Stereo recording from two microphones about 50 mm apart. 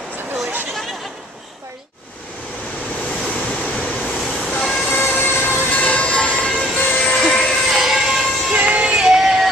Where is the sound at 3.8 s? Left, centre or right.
Left.